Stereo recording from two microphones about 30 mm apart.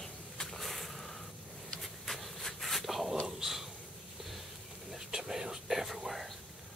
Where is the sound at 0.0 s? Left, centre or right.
Centre.